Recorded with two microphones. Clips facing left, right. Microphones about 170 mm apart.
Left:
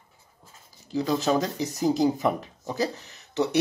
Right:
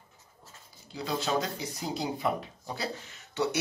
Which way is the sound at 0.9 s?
45° left (ahead or behind).